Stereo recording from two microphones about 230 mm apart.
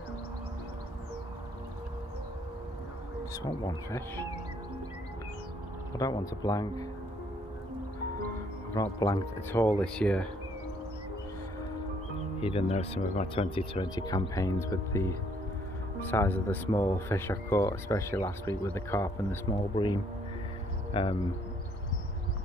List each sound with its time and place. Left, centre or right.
3.4 s speech: centre
5.9 s speech: centre
8.7 s speech: centre
12.4 s speech: left